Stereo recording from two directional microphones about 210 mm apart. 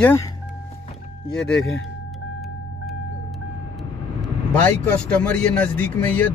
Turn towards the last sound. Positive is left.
turn(degrees=10)  # may be behind; listen again after turning